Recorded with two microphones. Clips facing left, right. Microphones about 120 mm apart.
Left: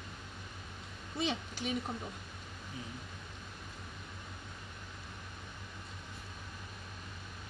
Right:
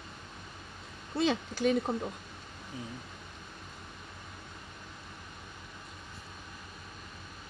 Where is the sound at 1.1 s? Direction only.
80° right.